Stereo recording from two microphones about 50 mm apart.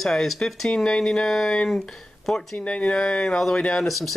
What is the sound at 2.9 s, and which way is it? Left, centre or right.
Speech, centre.